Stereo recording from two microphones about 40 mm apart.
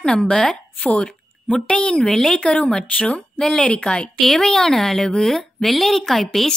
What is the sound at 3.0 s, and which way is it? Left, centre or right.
Speech, left.